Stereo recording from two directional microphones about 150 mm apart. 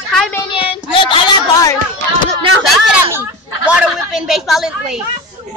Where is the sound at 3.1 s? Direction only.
10° right (ahead or behind).